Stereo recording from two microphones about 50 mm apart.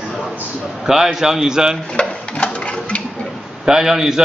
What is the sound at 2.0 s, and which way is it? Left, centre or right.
Sewing machine, centre.